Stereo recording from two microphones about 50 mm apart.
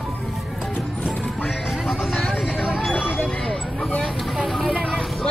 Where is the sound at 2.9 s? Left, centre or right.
Left.